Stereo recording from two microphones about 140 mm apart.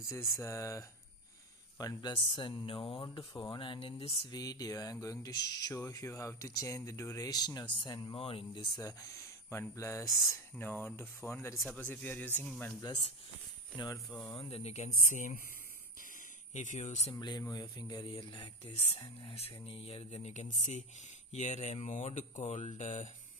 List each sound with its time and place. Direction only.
0.4 s speech: 20° left (ahead or behind); by 4.3 s 45° left (ahead or behind)
4.3 s speech: 25° left (ahead or behind)
8.2 s speech: 40° left (ahead or behind)
8.7 s speech: 25° left (ahead or behind)
10.0 s speech: centre (ahead or behind)
10.6 s speech: 15° left (ahead or behind)
14.3 s speech: 40° left (ahead or behind); by 15.3 s 60° left (ahead or behind)
16.5 s speech: 60° left (ahead or behind)
17.1 s speech: 30° left (ahead or behind)
18.8 s speech: 45° left (ahead or behind)